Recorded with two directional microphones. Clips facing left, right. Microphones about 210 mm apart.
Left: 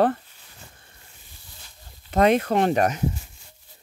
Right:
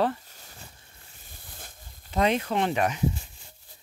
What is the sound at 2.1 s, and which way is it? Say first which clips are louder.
Speech: left 6 dB; 50° left (ahead or behind).